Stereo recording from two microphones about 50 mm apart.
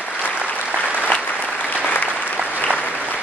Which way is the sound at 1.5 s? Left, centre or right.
Left.